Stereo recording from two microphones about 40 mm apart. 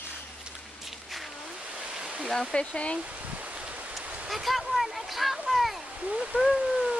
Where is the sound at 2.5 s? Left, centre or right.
Left.